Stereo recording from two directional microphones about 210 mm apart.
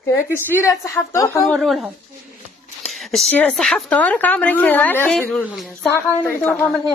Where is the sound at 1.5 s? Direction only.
Centre (ahead or behind).